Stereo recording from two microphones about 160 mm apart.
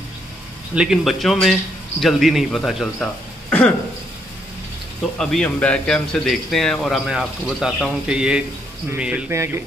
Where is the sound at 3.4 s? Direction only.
10° left (ahead or behind).